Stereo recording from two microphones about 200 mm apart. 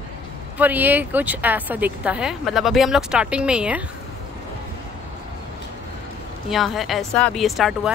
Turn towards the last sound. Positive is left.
turn(degrees=0)  # may be behind; listen again after turning